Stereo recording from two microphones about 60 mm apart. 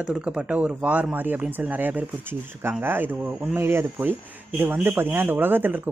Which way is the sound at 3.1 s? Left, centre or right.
Right.